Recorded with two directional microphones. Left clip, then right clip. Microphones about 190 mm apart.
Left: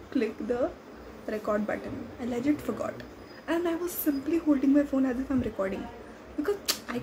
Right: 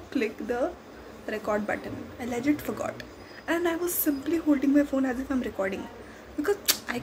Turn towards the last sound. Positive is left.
turn(degrees=0)  # may be behind; listen again after turning